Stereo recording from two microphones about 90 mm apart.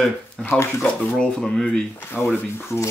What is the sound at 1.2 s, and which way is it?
Speech, 10° left (ahead or behind).